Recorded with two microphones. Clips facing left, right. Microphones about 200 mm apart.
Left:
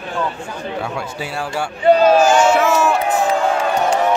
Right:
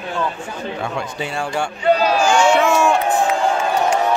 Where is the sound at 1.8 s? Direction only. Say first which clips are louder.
Left 5 dB; 45° left (ahead or behind).